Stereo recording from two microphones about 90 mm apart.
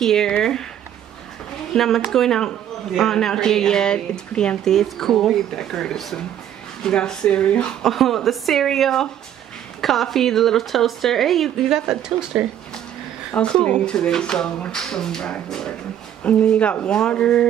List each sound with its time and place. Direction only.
0.0 s speech: 5° left (ahead or behind)
1.7 s a man's voice: centre (ahead or behind)
13.3 s speech: 10° left (ahead or behind)